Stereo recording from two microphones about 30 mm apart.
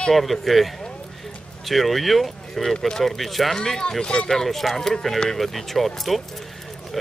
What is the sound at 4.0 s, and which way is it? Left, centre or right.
Speech, left.